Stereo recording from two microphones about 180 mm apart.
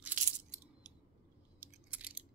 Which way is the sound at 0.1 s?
45° right (ahead or behind).